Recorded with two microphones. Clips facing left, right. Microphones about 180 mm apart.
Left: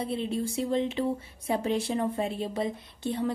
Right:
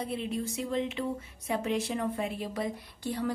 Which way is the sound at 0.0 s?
30° left (ahead or behind).